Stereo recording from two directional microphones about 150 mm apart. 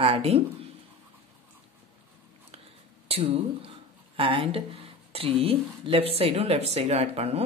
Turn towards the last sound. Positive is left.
turn(degrees=-45)  # may be behind; listen again after turning